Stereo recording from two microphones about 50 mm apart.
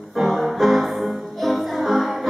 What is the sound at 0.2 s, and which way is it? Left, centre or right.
Music, centre.